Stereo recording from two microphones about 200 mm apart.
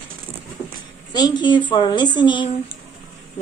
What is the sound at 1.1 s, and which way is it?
A woman's voice, 20° left (ahead or behind).